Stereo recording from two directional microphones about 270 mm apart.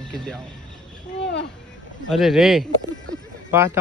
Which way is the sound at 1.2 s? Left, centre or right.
Left.